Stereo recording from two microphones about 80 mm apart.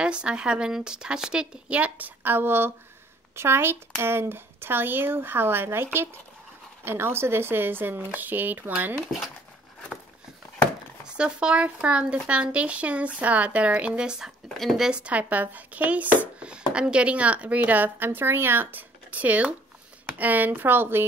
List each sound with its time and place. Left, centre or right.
0.0 s a woman's voice: centre
11.1 s speech: centre
14.6 s speech: centre
14.9 s a woman's voice: centre